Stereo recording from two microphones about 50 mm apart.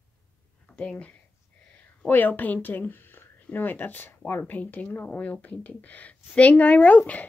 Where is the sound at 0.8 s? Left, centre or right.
Left.